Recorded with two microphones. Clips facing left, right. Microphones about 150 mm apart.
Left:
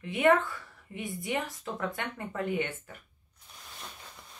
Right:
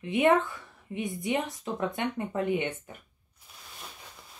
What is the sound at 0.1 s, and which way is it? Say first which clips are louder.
Speech: right 1 dB; 20° right (ahead or behind).